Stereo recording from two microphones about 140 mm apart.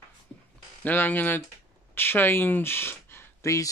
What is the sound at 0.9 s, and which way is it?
Speech, 10° left (ahead or behind).